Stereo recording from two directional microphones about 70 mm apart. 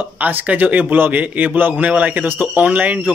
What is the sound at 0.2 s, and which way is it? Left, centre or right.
Speech, right.